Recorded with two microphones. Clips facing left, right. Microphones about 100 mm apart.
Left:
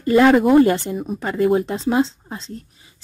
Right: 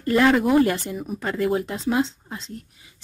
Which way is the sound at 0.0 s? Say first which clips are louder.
Left 5 dB; 20° left (ahead or behind).